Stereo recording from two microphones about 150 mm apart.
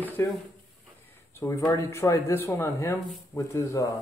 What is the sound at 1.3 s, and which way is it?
Speech, 20° left (ahead or behind).